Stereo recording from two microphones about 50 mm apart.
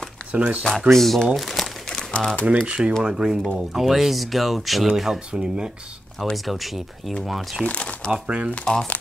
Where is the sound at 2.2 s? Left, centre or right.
Left.